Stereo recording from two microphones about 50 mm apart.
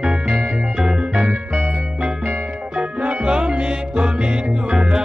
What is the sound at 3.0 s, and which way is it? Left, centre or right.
Music, centre.